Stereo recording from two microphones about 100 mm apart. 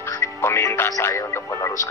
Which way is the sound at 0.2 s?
30° left (ahead or behind).